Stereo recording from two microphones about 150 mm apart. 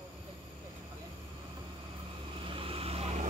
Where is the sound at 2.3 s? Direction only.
35° right (ahead or behind).